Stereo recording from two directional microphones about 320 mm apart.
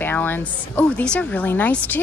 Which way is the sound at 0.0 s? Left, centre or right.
Centre.